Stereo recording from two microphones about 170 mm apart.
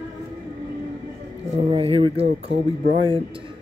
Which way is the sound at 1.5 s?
30° right (ahead or behind).